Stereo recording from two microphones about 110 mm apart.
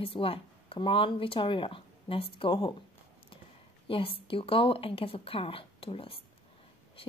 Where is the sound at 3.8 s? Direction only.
55° left (ahead or behind).